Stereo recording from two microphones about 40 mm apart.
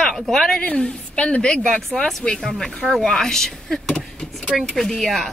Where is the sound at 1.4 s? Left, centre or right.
Centre.